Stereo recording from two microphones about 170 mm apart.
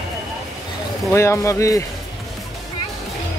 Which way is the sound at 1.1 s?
15° left (ahead or behind).